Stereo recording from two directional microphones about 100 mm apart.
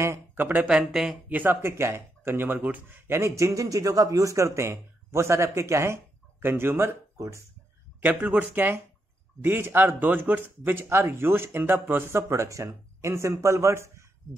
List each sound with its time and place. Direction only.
0.0 s a sound: 30° right (ahead or behind)
0.5 s speech: 15° right (ahead or behind)
1.3 s speech: 20° right (ahead or behind)
8.0 s speech: 15° right (ahead or behind)